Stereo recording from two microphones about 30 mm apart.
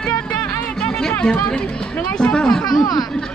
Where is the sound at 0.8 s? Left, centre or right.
Left.